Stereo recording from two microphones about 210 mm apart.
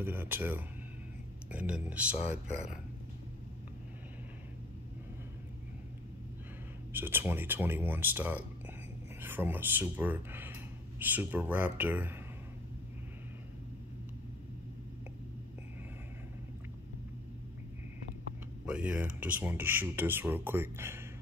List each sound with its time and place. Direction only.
0.0 s speech: 10° right (ahead or behind)
6.9 s speech: 10° right (ahead or behind)
18.7 s speech: 5° right (ahead or behind)